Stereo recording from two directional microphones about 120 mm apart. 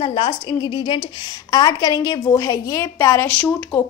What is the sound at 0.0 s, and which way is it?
A woman's voice, 45° left (ahead or behind).